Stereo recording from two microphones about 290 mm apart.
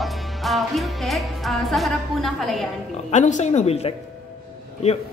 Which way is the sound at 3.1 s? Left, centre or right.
Left.